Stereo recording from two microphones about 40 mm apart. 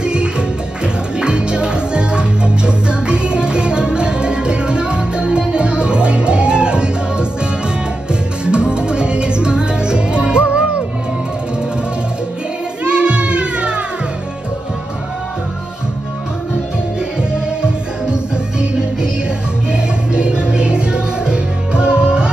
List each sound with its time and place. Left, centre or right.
0.0 s music: right
12.8 s music: right
18.1 s music: right